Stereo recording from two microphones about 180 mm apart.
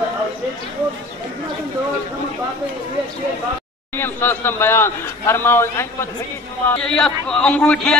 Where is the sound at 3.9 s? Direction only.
10° left (ahead or behind).